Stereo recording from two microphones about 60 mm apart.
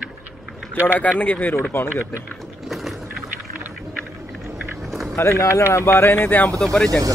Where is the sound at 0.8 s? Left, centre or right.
Left.